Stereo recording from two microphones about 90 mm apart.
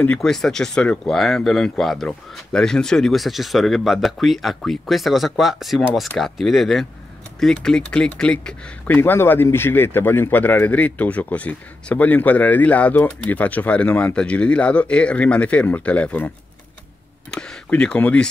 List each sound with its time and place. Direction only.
0.0 s speech: 10° left (ahead or behind)
17.3 s speech: 10° left (ahead or behind)